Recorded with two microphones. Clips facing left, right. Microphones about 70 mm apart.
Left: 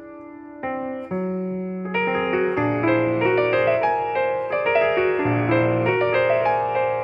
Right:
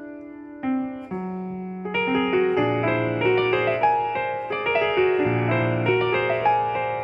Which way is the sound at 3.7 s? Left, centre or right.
Centre.